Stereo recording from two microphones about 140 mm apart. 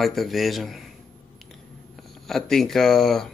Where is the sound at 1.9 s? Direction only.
Centre (ahead or behind).